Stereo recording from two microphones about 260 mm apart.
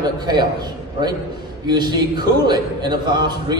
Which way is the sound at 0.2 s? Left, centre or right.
Centre.